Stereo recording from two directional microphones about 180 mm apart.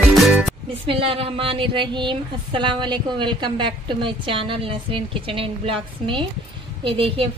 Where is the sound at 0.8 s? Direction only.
30° right (ahead or behind).